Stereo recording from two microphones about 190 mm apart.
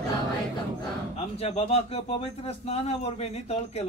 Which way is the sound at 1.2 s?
30° left (ahead or behind).